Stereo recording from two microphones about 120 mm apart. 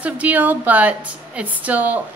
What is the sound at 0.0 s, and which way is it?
A woman's voice, 15° right (ahead or behind).